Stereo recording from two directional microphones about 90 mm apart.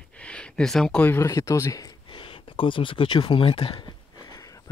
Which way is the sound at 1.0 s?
30° left (ahead or behind).